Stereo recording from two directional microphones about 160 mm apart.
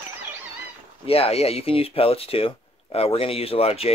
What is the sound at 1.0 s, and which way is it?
Speech, 35° left (ahead or behind).